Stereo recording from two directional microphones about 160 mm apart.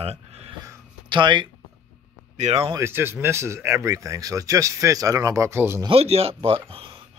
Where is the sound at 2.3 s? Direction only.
45° right (ahead or behind).